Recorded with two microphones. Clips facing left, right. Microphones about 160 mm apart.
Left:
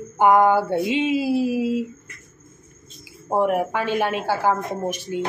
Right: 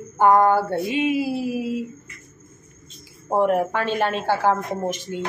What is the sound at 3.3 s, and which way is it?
A woman's voice, 5° left (ahead or behind).